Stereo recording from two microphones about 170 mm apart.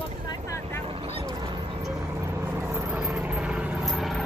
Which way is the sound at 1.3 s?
25° right (ahead or behind).